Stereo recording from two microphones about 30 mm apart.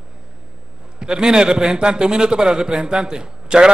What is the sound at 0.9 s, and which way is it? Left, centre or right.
A man's voice, right.